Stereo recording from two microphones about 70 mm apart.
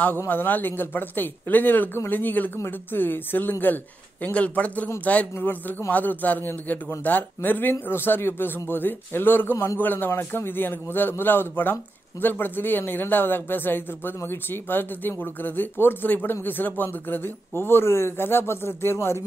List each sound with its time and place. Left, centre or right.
0.3 s a man's voice: left